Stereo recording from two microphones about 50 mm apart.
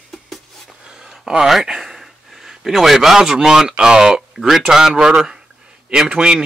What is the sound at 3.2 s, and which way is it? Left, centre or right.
Speech, centre.